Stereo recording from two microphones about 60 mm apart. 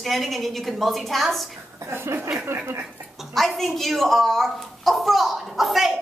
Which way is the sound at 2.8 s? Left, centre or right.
Centre.